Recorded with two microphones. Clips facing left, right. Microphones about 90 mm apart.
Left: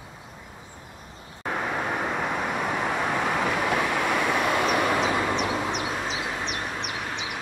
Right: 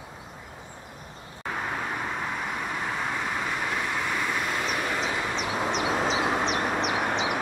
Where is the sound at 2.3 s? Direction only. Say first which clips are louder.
Left 4 dB; 75° left (ahead or behind).